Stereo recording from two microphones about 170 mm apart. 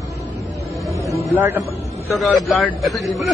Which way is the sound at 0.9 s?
15° right (ahead or behind).